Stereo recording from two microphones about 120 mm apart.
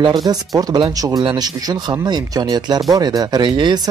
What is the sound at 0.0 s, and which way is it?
Speech, 35° right (ahead or behind).